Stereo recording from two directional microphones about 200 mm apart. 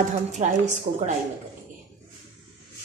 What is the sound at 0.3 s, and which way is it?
Speech, 35° right (ahead or behind).